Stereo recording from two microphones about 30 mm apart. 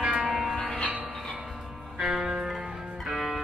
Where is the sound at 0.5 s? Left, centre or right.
Left.